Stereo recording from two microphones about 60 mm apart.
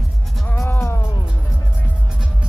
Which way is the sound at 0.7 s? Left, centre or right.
Left.